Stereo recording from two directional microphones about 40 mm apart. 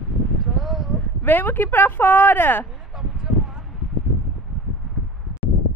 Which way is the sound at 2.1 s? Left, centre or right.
Left.